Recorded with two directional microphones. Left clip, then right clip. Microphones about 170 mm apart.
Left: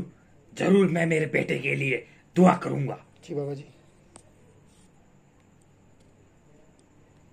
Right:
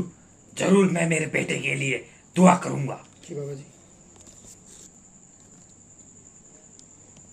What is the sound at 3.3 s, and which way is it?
Speech, 20° left (ahead or behind).